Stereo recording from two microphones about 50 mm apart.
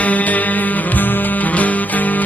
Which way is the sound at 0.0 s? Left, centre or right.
Left.